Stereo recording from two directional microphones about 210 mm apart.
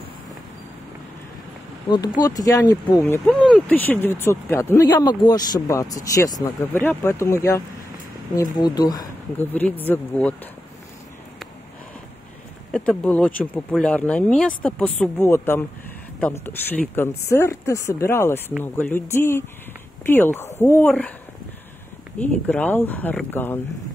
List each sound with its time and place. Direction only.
1.9 s speech: 20° left (ahead or behind)
12.7 s speech: 5° left (ahead or behind)
22.2 s speech: 5° left (ahead or behind)